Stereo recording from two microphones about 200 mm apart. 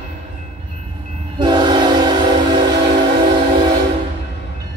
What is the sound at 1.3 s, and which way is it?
Train, 25° right (ahead or behind).